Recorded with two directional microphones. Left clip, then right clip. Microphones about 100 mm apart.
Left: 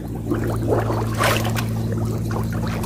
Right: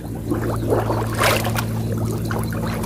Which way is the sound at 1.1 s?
35° right (ahead or behind).